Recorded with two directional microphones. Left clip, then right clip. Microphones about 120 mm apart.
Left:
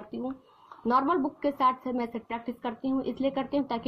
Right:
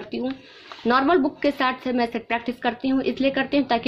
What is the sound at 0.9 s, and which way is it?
A woman's voice, 20° left (ahead or behind).